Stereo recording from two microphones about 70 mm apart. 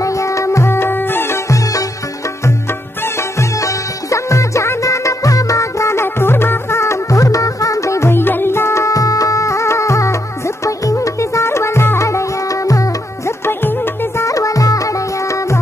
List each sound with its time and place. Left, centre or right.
0.0 s music: left
1.5 s music: left
3.2 s music: left
13.5 s music: left
14.2 s music: left